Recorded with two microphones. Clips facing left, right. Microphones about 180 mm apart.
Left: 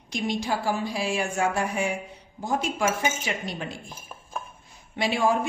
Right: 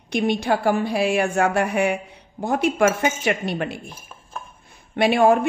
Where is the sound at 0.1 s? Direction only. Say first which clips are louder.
Right 7 dB; 60° right (ahead or behind).